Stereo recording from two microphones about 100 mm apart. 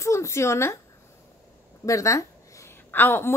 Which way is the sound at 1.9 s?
30° left (ahead or behind).